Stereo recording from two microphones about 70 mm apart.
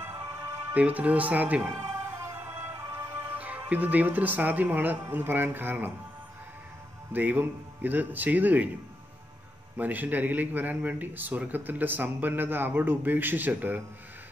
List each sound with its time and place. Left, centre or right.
0.0 s music: right
0.7 s speech: centre
1.8 s music: right
3.3 s speech: right
7.1 s speech: right
9.8 s speech: right